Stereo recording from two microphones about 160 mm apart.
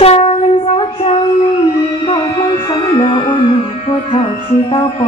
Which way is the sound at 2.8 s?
35° left (ahead or behind).